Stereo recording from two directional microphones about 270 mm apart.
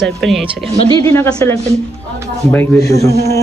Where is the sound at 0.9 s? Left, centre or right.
Centre.